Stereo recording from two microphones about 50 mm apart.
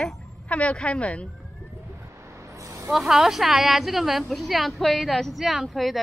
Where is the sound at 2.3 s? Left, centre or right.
Right.